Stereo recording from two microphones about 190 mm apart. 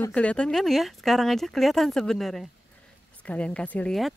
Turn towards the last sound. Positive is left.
turn(degrees=0)  # may be behind; listen again after turning